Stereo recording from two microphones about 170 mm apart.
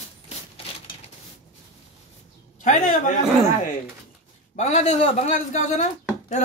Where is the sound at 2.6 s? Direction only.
50° left (ahead or behind).